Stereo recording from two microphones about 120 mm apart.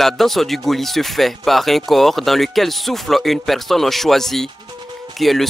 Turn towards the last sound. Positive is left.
turn(degrees=0)  # may be behind; listen again after turning